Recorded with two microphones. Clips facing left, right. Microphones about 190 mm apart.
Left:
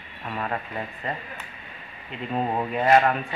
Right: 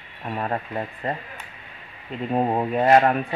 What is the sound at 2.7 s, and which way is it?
Speech, 35° right (ahead or behind).